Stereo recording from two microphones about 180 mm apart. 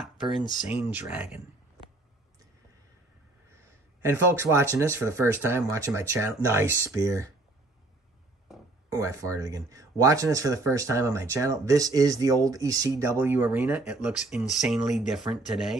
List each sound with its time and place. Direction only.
0.7 s speech: 10° right (ahead or behind)
4.0 s speech: 15° right (ahead or behind)
8.9 s speech: 15° right (ahead or behind)